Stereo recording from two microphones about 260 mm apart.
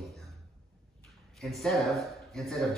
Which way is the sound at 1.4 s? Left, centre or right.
Centre.